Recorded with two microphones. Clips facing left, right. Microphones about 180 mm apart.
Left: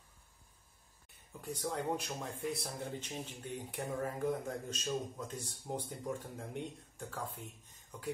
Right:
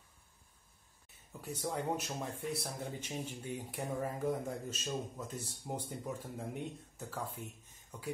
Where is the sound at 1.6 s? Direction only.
5° right (ahead or behind).